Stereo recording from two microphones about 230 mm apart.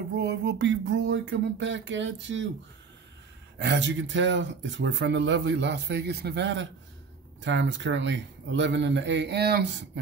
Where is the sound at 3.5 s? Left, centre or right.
Right.